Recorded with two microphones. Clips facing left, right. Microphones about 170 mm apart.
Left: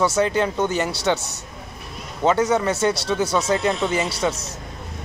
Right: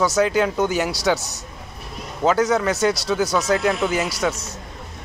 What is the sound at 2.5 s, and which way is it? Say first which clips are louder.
Speech: even; centre (ahead or behind).